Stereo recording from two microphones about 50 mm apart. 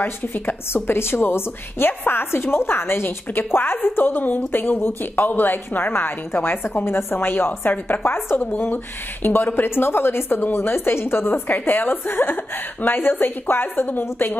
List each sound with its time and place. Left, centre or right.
0.0 s a woman's voice: left